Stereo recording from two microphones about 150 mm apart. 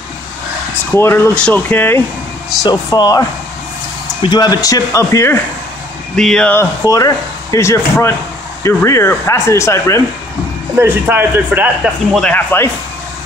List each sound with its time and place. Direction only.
0.9 s speech: 15° left (ahead or behind)
2.6 s speech: 25° left (ahead or behind)
6.1 s speech: 5° left (ahead or behind)
10.8 s a man's voice: 15° right (ahead or behind)
12.2 s speech: 10° left (ahead or behind)